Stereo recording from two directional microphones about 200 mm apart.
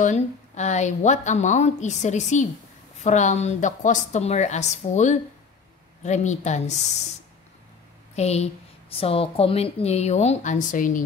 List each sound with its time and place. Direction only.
0.0 s a woman's voice: 35° left (ahead or behind)
8.2 s a woman's voice: 30° left (ahead or behind)